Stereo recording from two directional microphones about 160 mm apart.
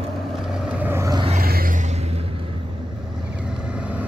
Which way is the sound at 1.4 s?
65° right (ahead or behind).